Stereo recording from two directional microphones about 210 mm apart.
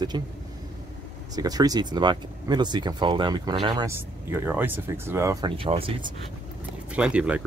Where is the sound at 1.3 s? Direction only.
15° right (ahead or behind).